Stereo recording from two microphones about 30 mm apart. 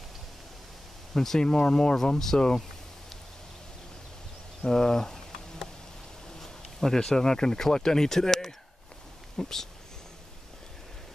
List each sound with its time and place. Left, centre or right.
1.1 s speech: centre
1.4 s speech: left
2.1 s speech: centre
4.6 s speech: left
6.4 s speech: centre